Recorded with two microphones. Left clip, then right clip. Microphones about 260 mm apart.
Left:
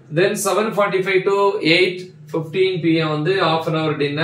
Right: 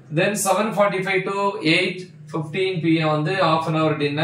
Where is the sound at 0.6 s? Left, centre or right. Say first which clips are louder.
Left 2 dB; centre.